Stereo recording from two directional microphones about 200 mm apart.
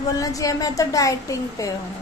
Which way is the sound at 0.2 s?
15° left (ahead or behind).